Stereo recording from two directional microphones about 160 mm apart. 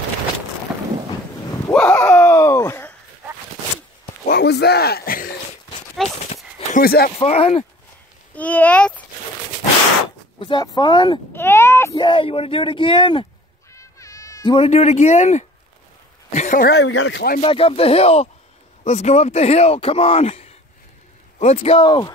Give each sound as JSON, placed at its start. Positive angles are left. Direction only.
{"t": 0.7, "sound": "a sound", "side_deg": -5}
{"t": 1.7, "sound": "a sound", "side_deg": 10}
{"t": 4.3, "sound": "a sound", "side_deg": 90}
{"t": 6.0, "sound": "horse", "side_deg": 0}
{"t": 6.8, "sound": "speech", "side_deg": 75}
{"t": 7.2, "sound": "speech", "side_deg": 40}
{"t": 8.4, "sound": "speech", "side_deg": 10}
{"t": 10.4, "sound": "speech", "side_deg": 25}
{"t": 11.3, "sound": "a sound", "side_deg": 15}
{"t": 12.0, "sound": "speech", "side_deg": 30}
{"t": 13.7, "sound": "cat", "side_deg": 20}
{"t": 14.7, "sound": "speech", "side_deg": 45}
{"t": 16.3, "sound": "speech", "side_deg": 55}
{"t": 17.4, "sound": "speech", "side_deg": 35}